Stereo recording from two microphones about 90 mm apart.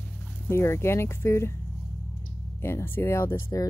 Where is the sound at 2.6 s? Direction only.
25° left (ahead or behind).